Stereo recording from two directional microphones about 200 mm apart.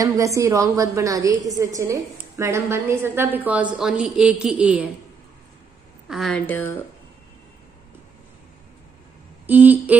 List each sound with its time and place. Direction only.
0.0 s a woman's voice: 15° right (ahead or behind)
6.0 s a woman's voice: centre (ahead or behind)
9.5 s a woman's voice: 10° right (ahead or behind)